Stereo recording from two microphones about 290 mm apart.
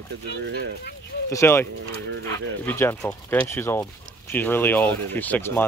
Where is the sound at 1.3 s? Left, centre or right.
Centre.